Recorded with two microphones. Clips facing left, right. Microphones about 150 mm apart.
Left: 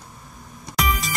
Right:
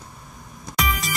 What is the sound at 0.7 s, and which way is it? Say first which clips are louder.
Music: left 1 dB; centre (ahead or behind).